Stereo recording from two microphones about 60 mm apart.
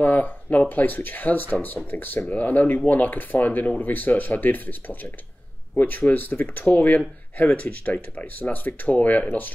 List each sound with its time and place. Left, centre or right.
0.0 s speech: left